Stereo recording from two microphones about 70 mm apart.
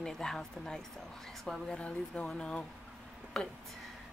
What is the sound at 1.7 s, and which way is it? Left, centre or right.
Speech, centre.